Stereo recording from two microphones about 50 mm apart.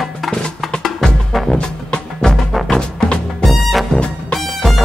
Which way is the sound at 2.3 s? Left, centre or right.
Centre.